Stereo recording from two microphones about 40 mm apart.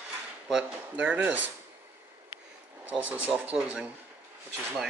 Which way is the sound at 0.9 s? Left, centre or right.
Right.